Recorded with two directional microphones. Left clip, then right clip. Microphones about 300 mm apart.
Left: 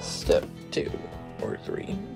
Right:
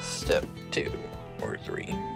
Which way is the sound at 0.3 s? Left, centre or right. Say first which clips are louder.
Left 4 dB; centre.